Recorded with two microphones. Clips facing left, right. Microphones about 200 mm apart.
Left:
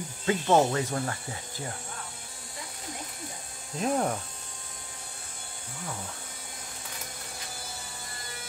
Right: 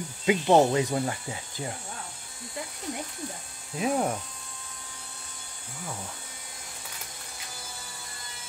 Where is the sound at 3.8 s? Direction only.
5° right (ahead or behind).